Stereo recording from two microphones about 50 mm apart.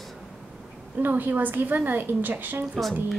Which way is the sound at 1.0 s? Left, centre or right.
Right.